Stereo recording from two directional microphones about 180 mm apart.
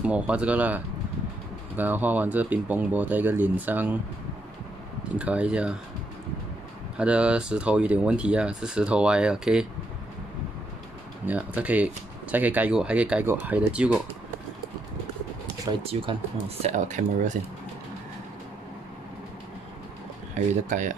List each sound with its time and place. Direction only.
0.0 s speech: 5° right (ahead or behind)
5.2 s speech: 5° right (ahead or behind)
7.0 s speech: 5° right (ahead or behind)
11.2 s speech: 10° right (ahead or behind)
15.8 s speech: 30° right (ahead or behind)
20.6 s speech: 45° right (ahead or behind)